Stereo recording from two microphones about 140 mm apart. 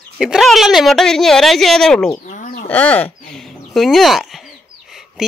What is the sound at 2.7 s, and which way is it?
Speech, 10° left (ahead or behind).